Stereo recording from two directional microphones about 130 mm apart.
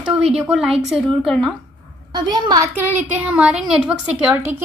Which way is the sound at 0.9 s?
5° left (ahead or behind).